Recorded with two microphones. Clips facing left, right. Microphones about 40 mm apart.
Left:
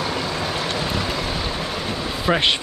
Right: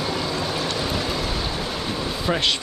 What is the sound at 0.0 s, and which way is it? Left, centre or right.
Vehicle, centre.